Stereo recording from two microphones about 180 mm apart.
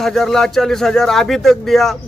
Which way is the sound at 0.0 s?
Centre (ahead or behind).